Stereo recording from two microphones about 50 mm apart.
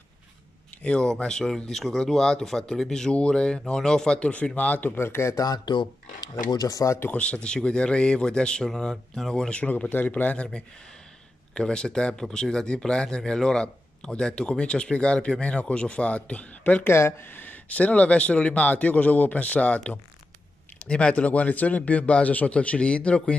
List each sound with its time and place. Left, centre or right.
0.8 s speech: centre
4.6 s speech: left
4.9 s speech: left
6.8 s speech: left
7.2 s speech: left
9.5 s speech: left
16.8 s speech: left
17.3 s speech: left